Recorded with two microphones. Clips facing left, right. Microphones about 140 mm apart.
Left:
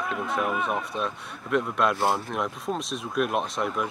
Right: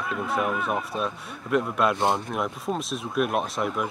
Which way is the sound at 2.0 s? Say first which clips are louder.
Right 1 dB; 20° right (ahead or behind).